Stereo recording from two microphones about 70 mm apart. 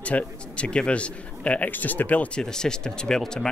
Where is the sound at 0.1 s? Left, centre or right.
Left.